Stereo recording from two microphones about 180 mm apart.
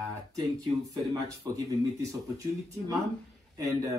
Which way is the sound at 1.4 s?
20° right (ahead or behind).